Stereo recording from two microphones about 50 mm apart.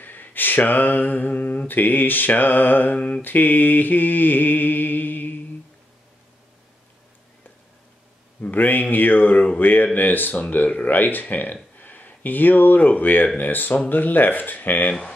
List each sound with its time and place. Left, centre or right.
0.0 s mantra: left
8.4 s mantra: left
11.8 s speech: left
13.4 s mantra: left